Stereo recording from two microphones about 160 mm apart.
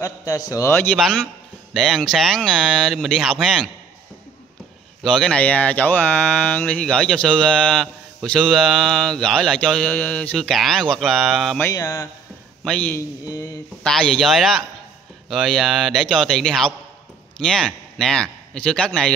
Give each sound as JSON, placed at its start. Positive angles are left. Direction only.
{"t": 0.0, "sound": "a man's voice", "side_deg": 20}
{"t": 0.9, "sound": "speech", "side_deg": 5}
{"t": 5.0, "sound": "speech", "side_deg": 5}
{"t": 11.6, "sound": "speech", "side_deg": 20}
{"t": 12.6, "sound": "a man's voice", "side_deg": 10}